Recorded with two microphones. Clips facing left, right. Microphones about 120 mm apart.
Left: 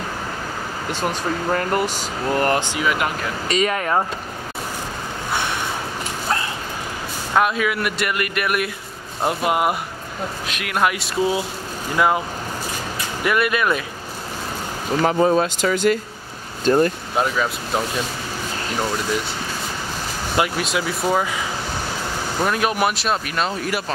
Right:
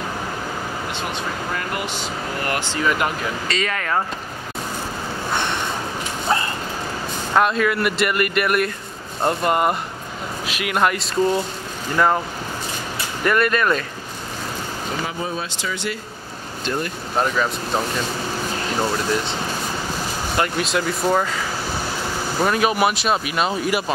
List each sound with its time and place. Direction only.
1.5 s speech: 40° left (ahead or behind)
2.7 s speech: 5° left (ahead or behind)
3.4 s speech: 20° left (ahead or behind)
5.3 s a sound: 5° left (ahead or behind)
6.2 s dog: centre (ahead or behind)
7.3 s speech: 5° left (ahead or behind)
13.2 s speech: 5° left (ahead or behind)
15.0 s speech: 50° left (ahead or behind)
17.2 s speech: 5° left (ahead or behind)
20.3 s speech: 5° left (ahead or behind)